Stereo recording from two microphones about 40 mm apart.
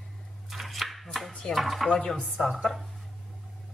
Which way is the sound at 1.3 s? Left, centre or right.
Centre.